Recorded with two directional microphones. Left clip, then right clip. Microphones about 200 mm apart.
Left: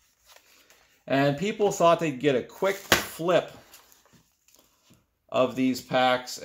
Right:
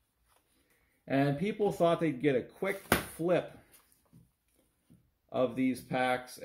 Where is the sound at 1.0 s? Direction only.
45° left (ahead or behind).